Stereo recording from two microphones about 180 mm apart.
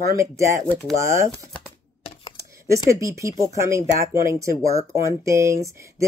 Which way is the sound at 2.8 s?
15° right (ahead or behind).